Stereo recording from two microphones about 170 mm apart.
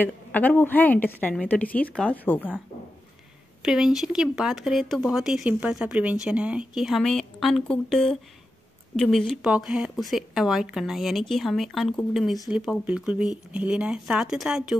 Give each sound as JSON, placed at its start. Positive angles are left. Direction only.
{"t": 0.0, "sound": "a woman's voice", "side_deg": 10}
{"t": 3.6, "sound": "speech", "side_deg": -5}